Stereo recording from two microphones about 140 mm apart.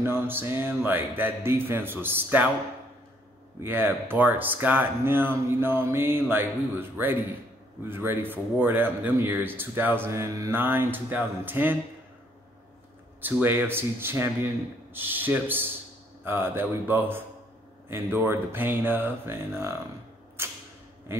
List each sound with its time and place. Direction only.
0.0 s speech: 15° right (ahead or behind)
3.6 s speech: 15° right (ahead or behind)
13.2 s speech: 15° right (ahead or behind)
20.4 s creak: 15° right (ahead or behind)
21.1 s speech: 15° right (ahead or behind)